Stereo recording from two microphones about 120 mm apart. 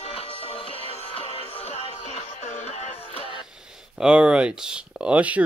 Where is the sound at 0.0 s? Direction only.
55° left (ahead or behind).